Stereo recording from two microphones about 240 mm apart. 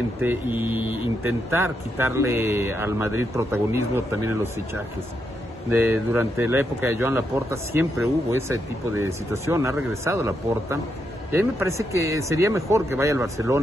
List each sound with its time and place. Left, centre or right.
0.2 s speech: centre
5.8 s speech: centre